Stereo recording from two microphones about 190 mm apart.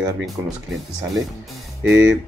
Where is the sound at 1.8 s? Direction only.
85° right.